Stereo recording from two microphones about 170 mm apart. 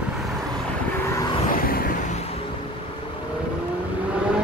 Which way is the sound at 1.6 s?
60° left (ahead or behind).